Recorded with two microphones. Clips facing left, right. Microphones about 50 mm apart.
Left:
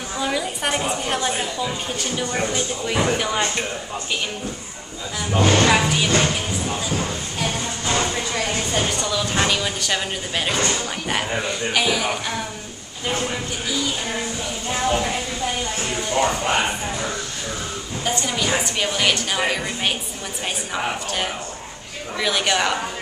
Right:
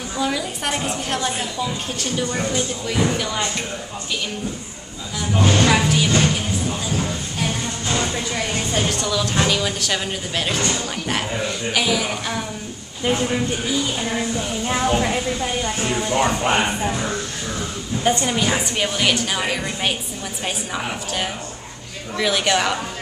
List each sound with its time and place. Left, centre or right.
0.2 s a woman's voice: centre
2.3 s a woman's voice: centre
5.2 s a woman's voice: centre
6.2 s music: centre
8.7 s a woman's voice: centre
13.0 s speech: centre
15.8 s speech: centre
18.8 s a woman's voice: centre